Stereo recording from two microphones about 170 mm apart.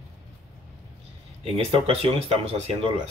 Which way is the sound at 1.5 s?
35° right (ahead or behind).